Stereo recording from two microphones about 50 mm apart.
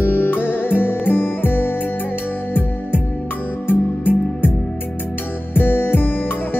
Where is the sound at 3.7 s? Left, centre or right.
Left.